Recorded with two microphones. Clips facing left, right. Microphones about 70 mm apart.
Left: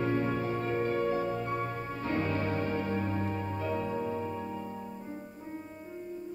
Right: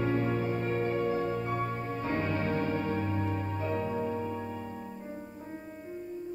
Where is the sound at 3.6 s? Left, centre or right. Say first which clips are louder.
Right 1 dB; centre.